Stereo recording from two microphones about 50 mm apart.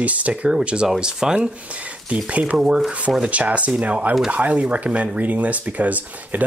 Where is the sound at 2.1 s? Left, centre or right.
Right.